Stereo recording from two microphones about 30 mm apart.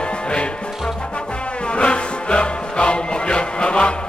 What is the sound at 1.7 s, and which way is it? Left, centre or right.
Music, left.